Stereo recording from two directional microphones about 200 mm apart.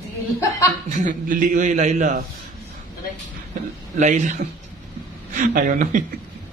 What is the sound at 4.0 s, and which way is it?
A man's voice, 35° right (ahead or behind).